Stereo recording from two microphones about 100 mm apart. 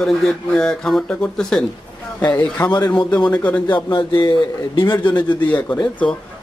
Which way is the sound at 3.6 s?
50° left (ahead or behind).